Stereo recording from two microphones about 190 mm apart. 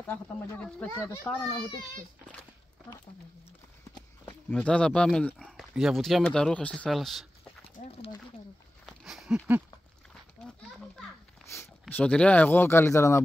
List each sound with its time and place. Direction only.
0.0 s speech: 10° left (ahead or behind)
4.3 s speech: 5° left (ahead or behind)
7.6 s a sound: 30° left (ahead or behind)
8.8 s a sound: centre (ahead or behind)
10.4 s children playing: centre (ahead or behind)
11.8 s speech: 5° left (ahead or behind)